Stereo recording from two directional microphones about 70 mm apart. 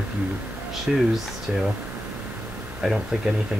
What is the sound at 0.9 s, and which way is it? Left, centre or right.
Speech, centre.